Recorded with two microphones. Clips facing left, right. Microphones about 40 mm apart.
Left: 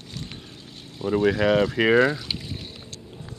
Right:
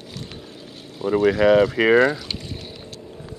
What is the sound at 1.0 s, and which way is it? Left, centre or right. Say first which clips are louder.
Speech: right 4 dB; centre.